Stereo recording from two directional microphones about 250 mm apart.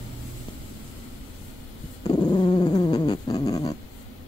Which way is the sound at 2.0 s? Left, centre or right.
Centre.